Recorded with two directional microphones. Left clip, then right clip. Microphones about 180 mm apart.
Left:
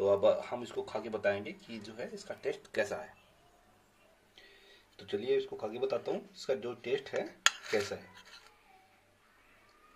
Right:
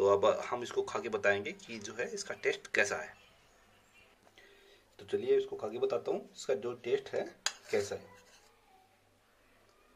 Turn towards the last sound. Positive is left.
turn(degrees=0)  # may be behind; listen again after turning